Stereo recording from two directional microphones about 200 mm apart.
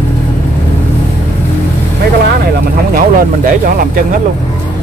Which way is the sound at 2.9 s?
45° right (ahead or behind).